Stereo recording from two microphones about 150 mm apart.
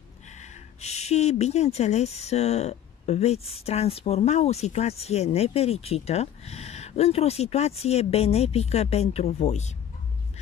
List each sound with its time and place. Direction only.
0.4 s speech: 45° left (ahead or behind)